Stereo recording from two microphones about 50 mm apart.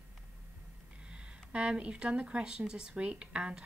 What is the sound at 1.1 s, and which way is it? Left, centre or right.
Speech, centre.